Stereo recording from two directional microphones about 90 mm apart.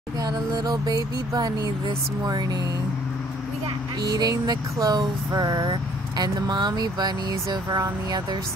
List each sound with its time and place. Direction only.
0.2 s speech: 45° right (ahead or behind)
4.0 s speech: 45° right (ahead or behind)